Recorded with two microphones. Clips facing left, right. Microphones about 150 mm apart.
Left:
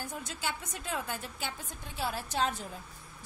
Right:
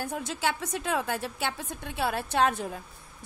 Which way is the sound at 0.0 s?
90° right.